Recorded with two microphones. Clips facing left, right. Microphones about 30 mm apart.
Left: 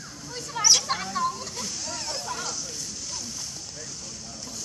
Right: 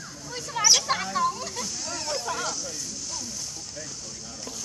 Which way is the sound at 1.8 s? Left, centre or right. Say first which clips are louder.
Right 4 dB; centre.